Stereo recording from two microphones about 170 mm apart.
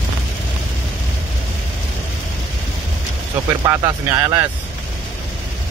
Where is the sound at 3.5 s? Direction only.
20° right (ahead or behind).